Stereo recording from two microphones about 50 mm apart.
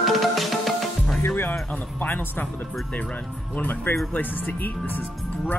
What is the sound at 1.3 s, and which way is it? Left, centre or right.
Speech, left.